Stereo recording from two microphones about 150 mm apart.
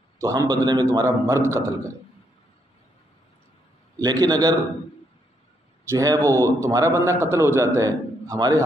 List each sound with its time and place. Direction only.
0.2 s a man's voice: 25° right (ahead or behind)
4.0 s a man's voice: 25° right (ahead or behind)
5.9 s a man's voice: 25° right (ahead or behind)